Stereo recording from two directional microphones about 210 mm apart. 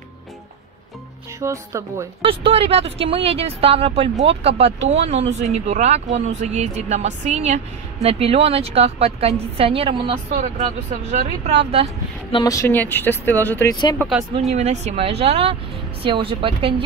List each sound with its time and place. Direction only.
1.4 s speech: 15° right (ahead or behind)
2.2 s speech: 25° right (ahead or behind)
12.3 s speech: 20° left (ahead or behind); by 14.2 s centre (ahead or behind)
14.5 s speech: 30° right (ahead or behind)